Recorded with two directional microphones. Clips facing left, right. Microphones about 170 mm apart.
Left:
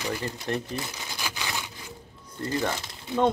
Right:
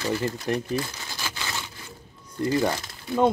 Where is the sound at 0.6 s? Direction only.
20° left (ahead or behind).